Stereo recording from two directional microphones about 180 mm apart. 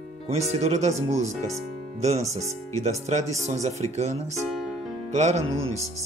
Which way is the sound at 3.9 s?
35° right (ahead or behind).